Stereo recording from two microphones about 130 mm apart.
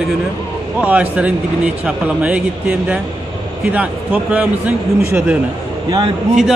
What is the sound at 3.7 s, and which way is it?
Speech, 10° right (ahead or behind).